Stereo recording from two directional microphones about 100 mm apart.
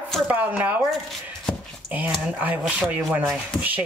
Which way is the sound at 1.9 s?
15° right (ahead or behind).